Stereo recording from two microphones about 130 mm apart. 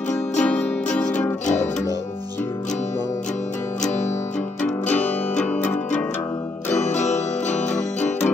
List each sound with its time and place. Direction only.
0.4 s music: 10° left (ahead or behind)
4.8 s music: 10° left (ahead or behind)
6.9 s music: 65° left (ahead or behind)